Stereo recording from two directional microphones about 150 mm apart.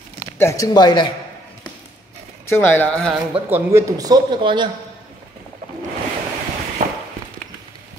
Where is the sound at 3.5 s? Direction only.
20° right (ahead or behind).